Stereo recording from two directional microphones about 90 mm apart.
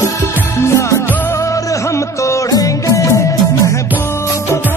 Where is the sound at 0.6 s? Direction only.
35° left (ahead or behind).